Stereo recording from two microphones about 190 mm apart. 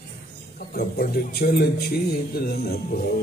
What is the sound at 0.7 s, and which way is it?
A man's voice, 55° left (ahead or behind).